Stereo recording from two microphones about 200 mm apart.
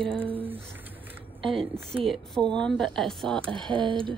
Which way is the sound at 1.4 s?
25° right (ahead or behind).